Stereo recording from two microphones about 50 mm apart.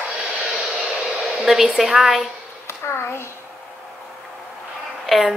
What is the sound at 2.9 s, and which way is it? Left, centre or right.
Speech, left.